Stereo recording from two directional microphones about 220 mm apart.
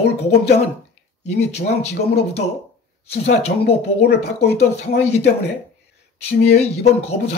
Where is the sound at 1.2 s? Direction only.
30° left (ahead or behind).